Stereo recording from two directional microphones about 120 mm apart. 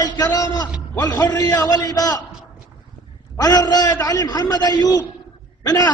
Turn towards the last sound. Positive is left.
turn(degrees=30)  # may be behind; listen again after turning